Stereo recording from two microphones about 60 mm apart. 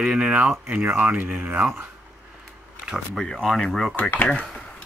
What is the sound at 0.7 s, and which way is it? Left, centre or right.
Speech, right.